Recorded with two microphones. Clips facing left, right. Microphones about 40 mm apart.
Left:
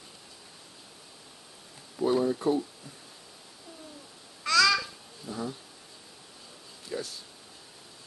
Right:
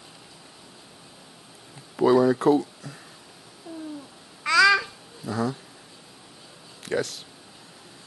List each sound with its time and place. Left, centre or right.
2.0 s speech: right
4.4 s babbling: right
5.2 s speech: right
6.8 s speech: right